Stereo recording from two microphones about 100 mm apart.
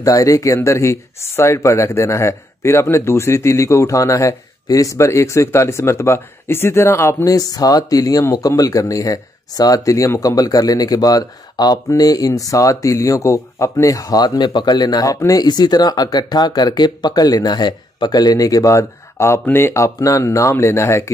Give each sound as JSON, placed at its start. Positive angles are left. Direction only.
{"t": 0.0, "sound": "speech", "side_deg": 35}